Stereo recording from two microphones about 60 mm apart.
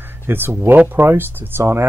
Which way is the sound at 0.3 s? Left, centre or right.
Right.